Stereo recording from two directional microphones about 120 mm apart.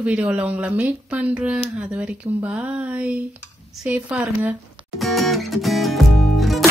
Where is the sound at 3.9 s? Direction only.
10° right (ahead or behind).